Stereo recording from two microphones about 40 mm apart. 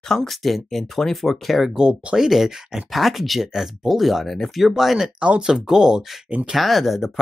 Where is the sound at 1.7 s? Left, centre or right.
Centre.